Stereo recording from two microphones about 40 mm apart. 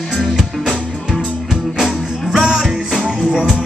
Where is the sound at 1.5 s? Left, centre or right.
Centre.